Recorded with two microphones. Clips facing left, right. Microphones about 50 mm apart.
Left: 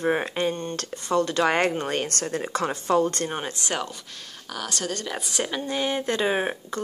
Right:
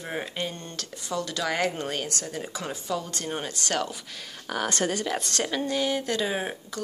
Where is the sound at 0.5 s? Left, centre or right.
Left.